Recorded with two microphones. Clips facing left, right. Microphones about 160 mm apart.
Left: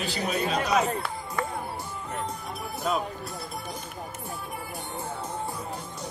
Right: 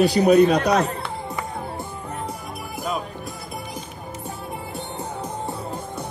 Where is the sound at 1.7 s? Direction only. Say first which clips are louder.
Right 3 dB; 15° right (ahead or behind).